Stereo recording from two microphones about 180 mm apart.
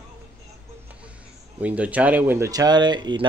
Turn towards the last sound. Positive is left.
turn(degrees=-25)  # may be behind; listen again after turning